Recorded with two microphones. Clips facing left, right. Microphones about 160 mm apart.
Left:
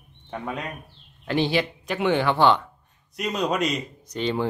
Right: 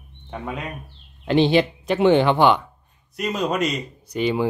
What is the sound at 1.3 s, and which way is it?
Speech, 25° right (ahead or behind).